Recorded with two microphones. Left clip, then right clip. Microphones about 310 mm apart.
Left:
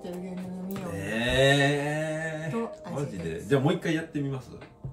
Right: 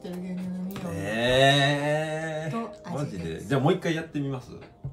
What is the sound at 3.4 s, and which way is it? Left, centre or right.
Music, centre.